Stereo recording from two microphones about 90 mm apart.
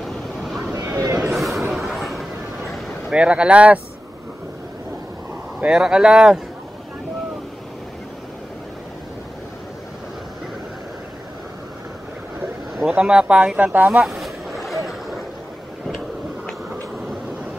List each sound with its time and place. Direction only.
0.0 s vehicle: centre (ahead or behind)
0.9 s a sound: 40° right (ahead or behind)
1.2 s a sound: centre (ahead or behind)
1.7 s vehicle: centre (ahead or behind)
3.2 s speech: 15° right (ahead or behind)
5.6 s speech: 10° right (ahead or behind)
12.7 s speech: 10° right (ahead or behind)
14.0 s boat: centre (ahead or behind)